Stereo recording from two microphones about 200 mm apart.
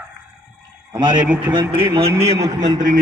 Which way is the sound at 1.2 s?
5° right (ahead or behind).